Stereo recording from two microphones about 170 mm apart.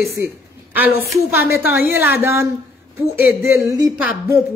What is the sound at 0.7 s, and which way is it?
Speech, 10° right (ahead or behind).